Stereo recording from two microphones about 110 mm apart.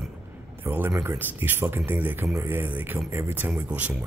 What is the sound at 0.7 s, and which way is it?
Speech, 20° right (ahead or behind).